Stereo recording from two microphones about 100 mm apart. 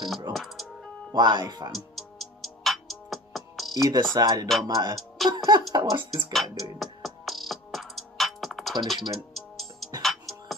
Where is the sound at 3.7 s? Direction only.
45° right (ahead or behind).